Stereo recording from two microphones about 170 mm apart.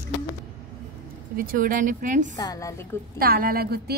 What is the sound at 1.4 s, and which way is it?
Speech, 55° right (ahead or behind).